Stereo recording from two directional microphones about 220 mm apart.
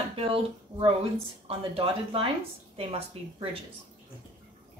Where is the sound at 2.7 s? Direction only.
25° right (ahead or behind).